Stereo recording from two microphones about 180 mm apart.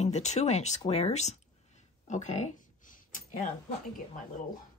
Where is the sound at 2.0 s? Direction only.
40° left (ahead or behind).